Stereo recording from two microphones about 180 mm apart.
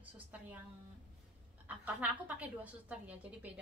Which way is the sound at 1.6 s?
10° right (ahead or behind).